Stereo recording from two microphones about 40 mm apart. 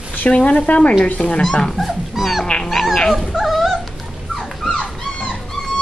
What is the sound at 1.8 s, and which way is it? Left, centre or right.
Dog, centre.